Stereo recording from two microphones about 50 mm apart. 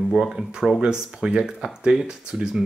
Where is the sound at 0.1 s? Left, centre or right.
Centre.